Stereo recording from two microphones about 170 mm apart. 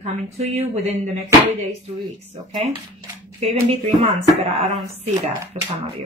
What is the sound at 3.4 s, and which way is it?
Speech, 35° right (ahead or behind).